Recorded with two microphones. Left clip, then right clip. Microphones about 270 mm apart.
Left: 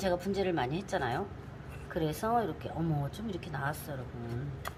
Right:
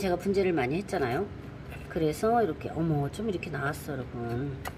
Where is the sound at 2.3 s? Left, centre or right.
Centre.